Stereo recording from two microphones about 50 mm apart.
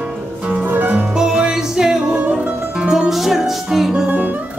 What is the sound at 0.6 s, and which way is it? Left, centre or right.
Music, right.